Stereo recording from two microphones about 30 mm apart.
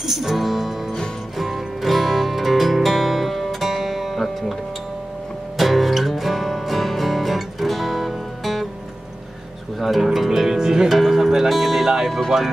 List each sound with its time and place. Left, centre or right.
0.0 s music: centre
5.6 s music: centre
9.8 s music: centre
10.6 s music: right
10.9 s music: centre
12.3 s speech: centre